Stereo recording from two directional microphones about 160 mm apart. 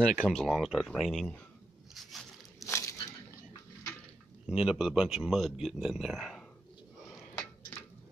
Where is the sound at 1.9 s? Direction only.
Centre (ahead or behind).